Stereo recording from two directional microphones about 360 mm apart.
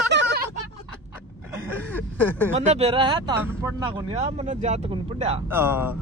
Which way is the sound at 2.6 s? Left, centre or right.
Centre.